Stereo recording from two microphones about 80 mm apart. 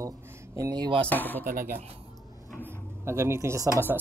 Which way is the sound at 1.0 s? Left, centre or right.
Left.